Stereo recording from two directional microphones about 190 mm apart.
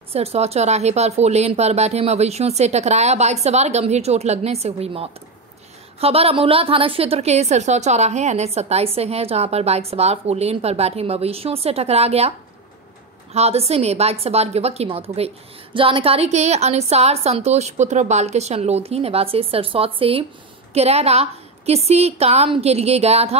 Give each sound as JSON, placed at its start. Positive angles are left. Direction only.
{"t": 0.1, "sound": "a woman's voice", "side_deg": -30}